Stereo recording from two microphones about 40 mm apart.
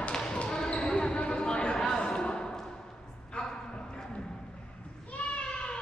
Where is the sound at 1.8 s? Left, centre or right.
Centre.